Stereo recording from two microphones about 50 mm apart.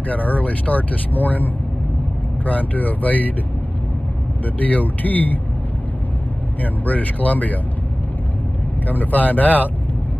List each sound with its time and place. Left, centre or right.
0.1 s speech: left
4.6 s speech: left
6.6 s speech: left
8.8 s speech: left